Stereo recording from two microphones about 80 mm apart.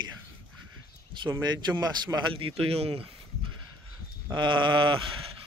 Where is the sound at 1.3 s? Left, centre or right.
Right.